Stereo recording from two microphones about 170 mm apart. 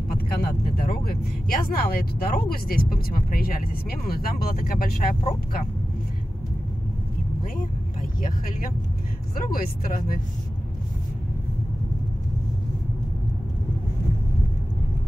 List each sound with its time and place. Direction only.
0.7 s speech: 60° left (ahead or behind)
7.5 s speech: 55° left (ahead or behind)